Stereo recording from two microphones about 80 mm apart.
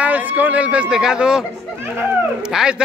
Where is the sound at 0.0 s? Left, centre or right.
Right.